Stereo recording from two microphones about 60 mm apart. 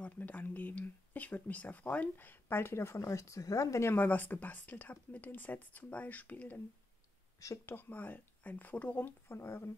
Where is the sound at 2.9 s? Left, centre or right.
Left.